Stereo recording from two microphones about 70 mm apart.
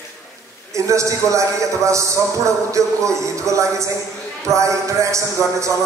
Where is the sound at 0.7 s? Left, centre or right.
Right.